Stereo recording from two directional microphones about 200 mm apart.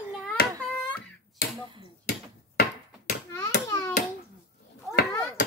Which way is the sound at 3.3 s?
15° left (ahead or behind).